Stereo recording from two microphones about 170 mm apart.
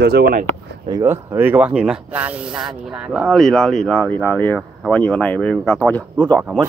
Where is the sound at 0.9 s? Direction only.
15° right (ahead or behind).